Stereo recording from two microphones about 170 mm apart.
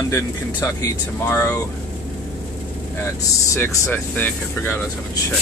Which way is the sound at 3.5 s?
10° left (ahead or behind).